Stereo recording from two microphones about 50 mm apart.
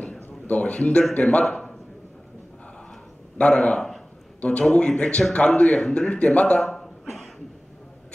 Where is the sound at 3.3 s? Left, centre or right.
Left.